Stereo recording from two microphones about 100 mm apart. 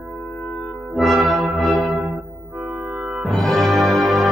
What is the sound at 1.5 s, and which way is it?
Music, centre (ahead or behind).